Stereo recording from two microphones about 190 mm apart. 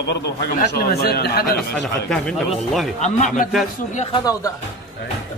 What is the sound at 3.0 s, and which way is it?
Speech, 40° left (ahead or behind).